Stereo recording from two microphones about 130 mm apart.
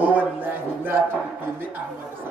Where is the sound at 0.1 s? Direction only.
15° right (ahead or behind).